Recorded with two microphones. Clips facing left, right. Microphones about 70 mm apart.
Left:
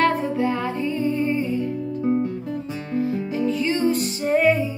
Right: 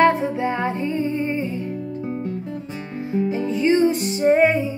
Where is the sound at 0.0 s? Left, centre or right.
Right.